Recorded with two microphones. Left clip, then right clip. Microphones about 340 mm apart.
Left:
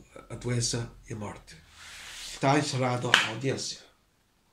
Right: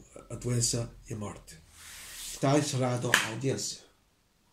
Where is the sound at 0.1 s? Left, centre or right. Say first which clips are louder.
Left 1 dB; left.